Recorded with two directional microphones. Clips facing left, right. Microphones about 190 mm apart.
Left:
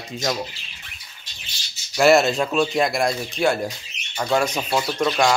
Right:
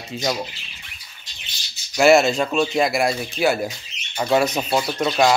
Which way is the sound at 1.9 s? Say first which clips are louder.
Right 1 dB; centre (ahead or behind).